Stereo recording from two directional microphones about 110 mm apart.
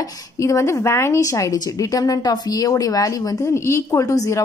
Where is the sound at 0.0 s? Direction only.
30° left (ahead or behind).